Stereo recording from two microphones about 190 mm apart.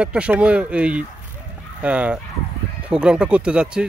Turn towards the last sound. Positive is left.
turn(degrees=-5)  # may be behind; listen again after turning